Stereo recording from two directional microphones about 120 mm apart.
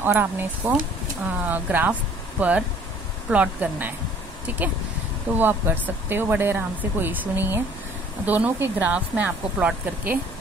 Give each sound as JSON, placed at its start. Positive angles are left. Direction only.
{"t": 0.0, "sound": "speech", "side_deg": -15}